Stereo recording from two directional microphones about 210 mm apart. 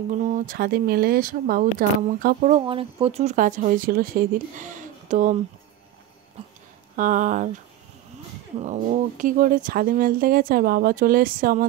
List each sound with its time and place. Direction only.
0.2 s speech: 40° right (ahead or behind)
2.6 s speech: 25° right (ahead or behind)
7.0 s speech: 40° right (ahead or behind)
8.5 s speech: 35° right (ahead or behind)